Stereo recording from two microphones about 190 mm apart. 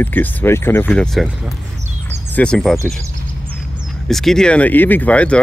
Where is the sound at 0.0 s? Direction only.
10° left (ahead or behind).